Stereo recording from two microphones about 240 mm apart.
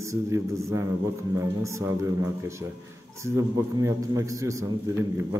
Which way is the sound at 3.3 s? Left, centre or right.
Centre.